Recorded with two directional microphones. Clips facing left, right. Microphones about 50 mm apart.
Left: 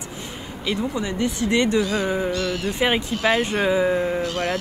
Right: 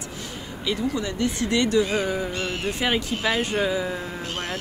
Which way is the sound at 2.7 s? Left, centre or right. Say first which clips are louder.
Left 3 dB; left.